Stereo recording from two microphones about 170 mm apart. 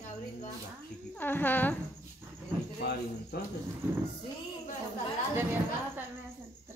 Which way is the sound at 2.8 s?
70° left (ahead or behind).